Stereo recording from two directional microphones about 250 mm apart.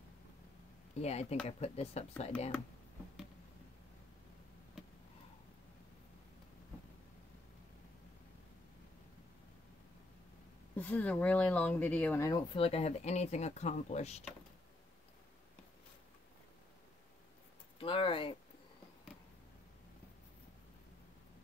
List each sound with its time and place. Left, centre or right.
0.9 s speech: left
10.8 s speech: centre
12.5 s speech: left
17.7 s speech: left